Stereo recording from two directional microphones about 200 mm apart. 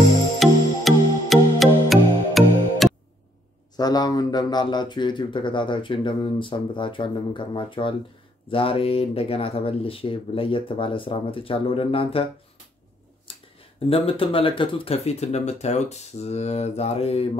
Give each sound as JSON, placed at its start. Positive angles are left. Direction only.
{"t": 0.4, "sound": "music", "side_deg": 0}
{"t": 3.7, "sound": "speech", "side_deg": 20}
{"t": 13.3, "sound": "speech", "side_deg": 30}